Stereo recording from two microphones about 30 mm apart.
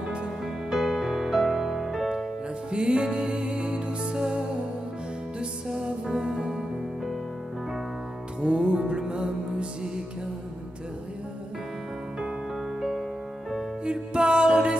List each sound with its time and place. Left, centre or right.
0.7 s music: centre
2.7 s music: right
6.2 s music: right
8.4 s music: right
13.8 s music: right